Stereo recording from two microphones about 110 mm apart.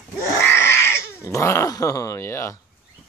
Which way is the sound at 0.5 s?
20° left (ahead or behind).